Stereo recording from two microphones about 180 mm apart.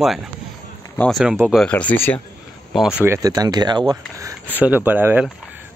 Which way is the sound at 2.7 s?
5° right (ahead or behind).